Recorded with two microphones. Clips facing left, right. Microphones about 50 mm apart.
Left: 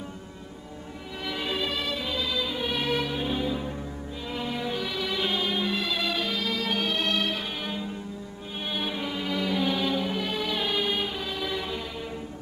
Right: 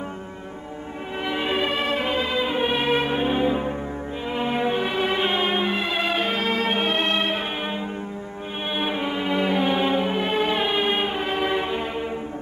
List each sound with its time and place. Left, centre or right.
1.2 s music: right